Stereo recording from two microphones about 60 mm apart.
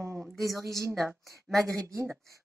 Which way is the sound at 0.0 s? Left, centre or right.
Right.